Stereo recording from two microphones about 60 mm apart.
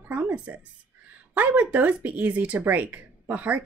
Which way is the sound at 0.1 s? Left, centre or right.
Right.